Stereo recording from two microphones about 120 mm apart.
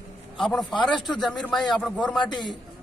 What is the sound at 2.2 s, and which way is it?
Speech, 40° left (ahead or behind).